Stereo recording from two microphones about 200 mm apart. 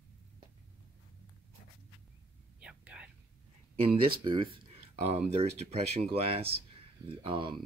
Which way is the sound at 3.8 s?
25° right (ahead or behind).